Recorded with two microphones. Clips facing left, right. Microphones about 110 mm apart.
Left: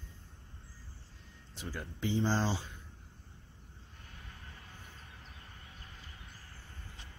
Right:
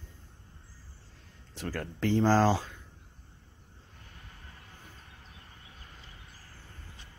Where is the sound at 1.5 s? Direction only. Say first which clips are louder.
Right 7 dB; 90° right.